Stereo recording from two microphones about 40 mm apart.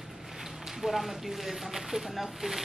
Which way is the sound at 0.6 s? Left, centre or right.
Centre.